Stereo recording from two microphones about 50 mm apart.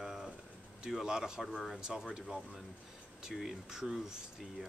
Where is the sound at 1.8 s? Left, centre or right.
Centre.